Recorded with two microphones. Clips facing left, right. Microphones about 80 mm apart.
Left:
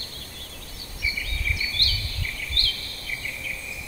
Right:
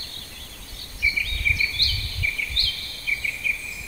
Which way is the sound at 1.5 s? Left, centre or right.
Left.